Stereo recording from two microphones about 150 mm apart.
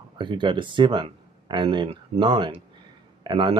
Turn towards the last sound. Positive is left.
turn(degrees=-30)  # may be behind; listen again after turning